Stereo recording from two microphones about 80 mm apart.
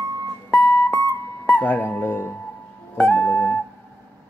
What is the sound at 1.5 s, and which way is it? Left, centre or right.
Music, left.